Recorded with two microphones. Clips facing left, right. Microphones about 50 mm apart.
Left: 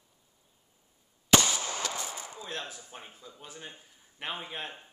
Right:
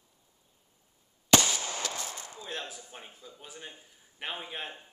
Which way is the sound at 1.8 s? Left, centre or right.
Centre.